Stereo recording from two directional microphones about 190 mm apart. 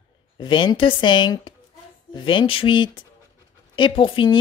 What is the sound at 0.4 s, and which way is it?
Speech, 25° left (ahead or behind).